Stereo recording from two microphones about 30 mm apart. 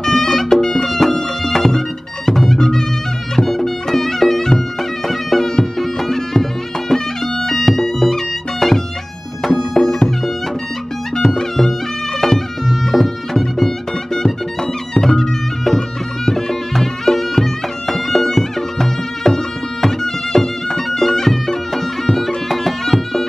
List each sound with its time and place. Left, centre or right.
0.0 s music: centre
9.5 s music: left
11.2 s music: centre